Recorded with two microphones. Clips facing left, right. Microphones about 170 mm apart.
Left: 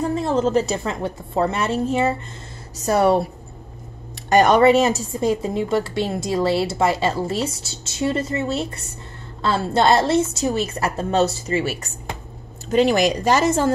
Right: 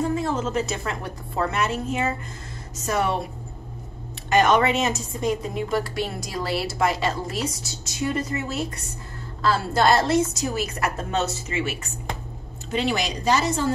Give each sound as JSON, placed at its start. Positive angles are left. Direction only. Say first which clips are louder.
{"t": 0.1, "sound": "a woman's voice", "louder": "left 6 dB", "side_deg": 30}
{"t": 4.3, "sound": "a woman's voice", "louder": "left 5 dB", "side_deg": 35}